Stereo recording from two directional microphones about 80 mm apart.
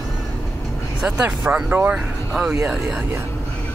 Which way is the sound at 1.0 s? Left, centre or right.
Centre.